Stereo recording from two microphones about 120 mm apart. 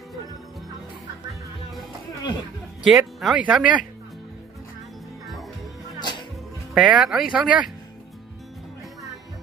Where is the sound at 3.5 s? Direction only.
10° right (ahead or behind).